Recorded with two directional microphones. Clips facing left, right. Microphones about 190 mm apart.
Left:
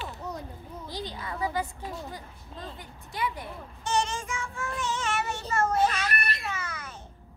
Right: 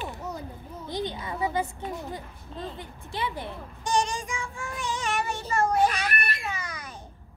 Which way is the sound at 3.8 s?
15° right (ahead or behind).